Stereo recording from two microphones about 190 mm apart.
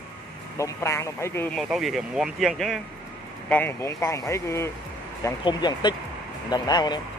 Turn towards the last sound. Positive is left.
turn(degrees=20)  # may be behind; listen again after turning